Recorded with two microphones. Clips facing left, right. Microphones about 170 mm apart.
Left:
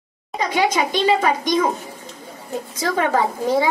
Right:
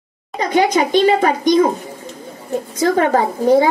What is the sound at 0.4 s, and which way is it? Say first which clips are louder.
A woman's voice: right 5 dB; 50° right (ahead or behind).